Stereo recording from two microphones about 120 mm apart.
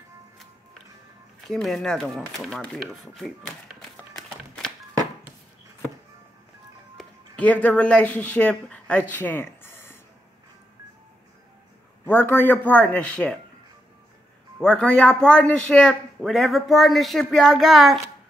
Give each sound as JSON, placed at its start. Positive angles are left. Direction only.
{"t": 1.5, "sound": "speech", "side_deg": 5}
{"t": 7.3, "sound": "speech", "side_deg": 10}
{"t": 9.1, "sound": "a sound", "side_deg": 15}
{"t": 12.1, "sound": "speech", "side_deg": 20}
{"t": 14.6, "sound": "speech", "side_deg": 10}